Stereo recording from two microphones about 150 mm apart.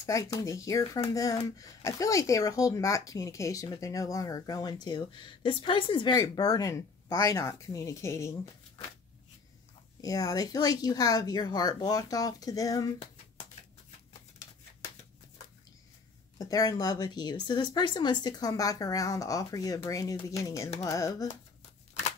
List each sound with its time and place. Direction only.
0.0 s speech: 20° left (ahead or behind)
10.0 s speech: 25° left (ahead or behind)
16.3 s speech: 25° left (ahead or behind)